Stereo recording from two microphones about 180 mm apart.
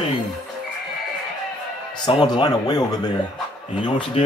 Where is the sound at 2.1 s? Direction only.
25° left (ahead or behind).